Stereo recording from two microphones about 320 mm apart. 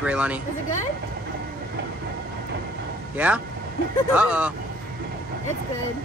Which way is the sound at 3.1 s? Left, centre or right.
Centre.